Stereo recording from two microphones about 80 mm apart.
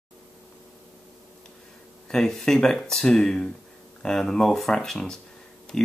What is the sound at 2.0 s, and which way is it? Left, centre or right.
Speech, centre.